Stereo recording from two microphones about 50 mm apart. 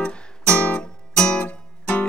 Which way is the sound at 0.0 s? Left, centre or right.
Left.